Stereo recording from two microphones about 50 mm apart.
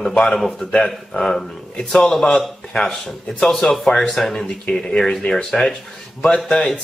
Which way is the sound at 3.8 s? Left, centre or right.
Centre.